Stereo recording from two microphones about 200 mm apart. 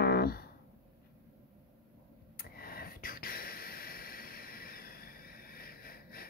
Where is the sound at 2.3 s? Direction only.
45° left (ahead or behind).